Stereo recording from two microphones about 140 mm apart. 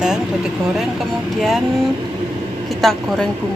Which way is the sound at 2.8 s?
Centre (ahead or behind).